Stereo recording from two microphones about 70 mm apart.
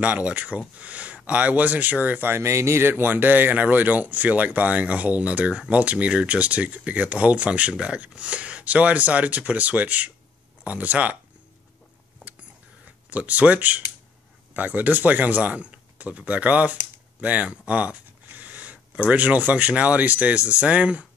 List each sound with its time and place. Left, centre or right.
0.0 s speech: centre
12.8 s speech: right